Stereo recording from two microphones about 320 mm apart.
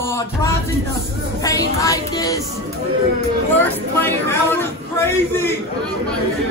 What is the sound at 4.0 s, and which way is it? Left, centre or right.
A woman's voice, centre.